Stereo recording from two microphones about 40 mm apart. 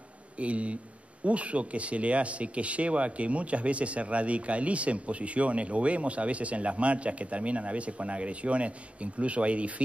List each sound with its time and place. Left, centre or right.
0.4 s speech: right